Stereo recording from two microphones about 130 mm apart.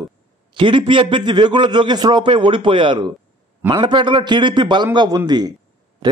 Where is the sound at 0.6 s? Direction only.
40° right (ahead or behind).